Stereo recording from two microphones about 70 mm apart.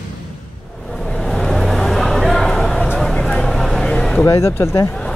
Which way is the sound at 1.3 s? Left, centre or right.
Centre.